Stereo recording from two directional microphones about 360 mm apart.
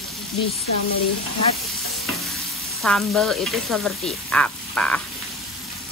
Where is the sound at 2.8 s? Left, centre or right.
Centre.